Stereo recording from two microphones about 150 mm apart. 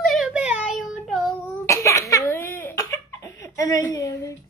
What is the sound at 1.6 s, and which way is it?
Cough, 20° left (ahead or behind).